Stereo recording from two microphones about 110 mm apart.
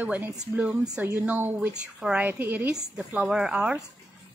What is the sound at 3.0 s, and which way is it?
Speech, 5° right (ahead or behind).